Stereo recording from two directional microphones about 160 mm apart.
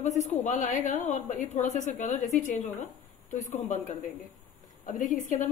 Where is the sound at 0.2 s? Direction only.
50° left (ahead or behind).